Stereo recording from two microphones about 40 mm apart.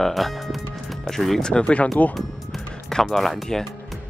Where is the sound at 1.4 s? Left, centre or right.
Left.